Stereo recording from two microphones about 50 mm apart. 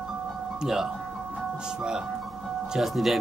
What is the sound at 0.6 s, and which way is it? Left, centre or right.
Music, centre.